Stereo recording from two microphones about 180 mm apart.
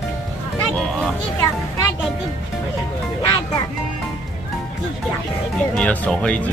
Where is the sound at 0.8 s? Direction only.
5° left (ahead or behind).